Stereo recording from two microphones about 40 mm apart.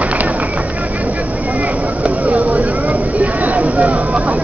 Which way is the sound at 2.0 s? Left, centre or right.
Right.